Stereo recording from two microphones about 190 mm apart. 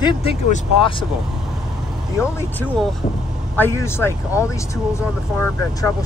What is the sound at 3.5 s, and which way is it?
Speech, 10° left (ahead or behind).